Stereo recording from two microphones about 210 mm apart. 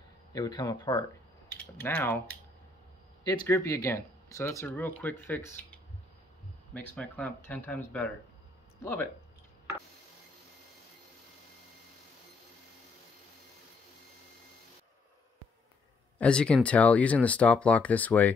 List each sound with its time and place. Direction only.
0.3 s speech: 20° left (ahead or behind)
3.3 s speech: 15° left (ahead or behind)
16.2 s speech: 5° left (ahead or behind)